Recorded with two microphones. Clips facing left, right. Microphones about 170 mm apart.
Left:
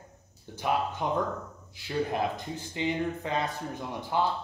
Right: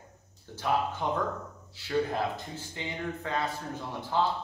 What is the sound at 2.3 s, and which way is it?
Speech, 15° left (ahead or behind).